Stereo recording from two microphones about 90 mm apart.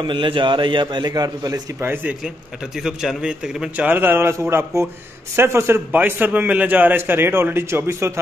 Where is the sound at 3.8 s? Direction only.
25° right (ahead or behind).